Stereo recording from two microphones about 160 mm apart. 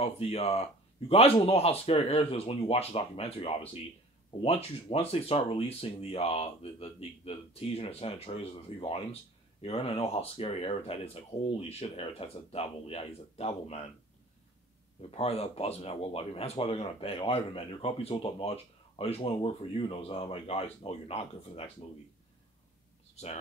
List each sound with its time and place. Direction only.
0.0 s speech: 40° left (ahead or behind)
15.0 s speech: 40° left (ahead or behind)